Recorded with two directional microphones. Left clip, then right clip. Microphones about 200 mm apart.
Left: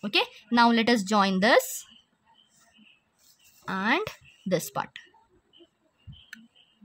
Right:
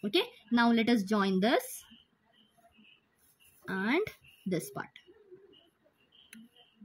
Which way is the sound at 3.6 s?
35° left (ahead or behind).